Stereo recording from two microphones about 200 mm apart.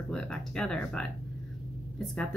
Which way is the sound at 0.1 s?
5° left (ahead or behind).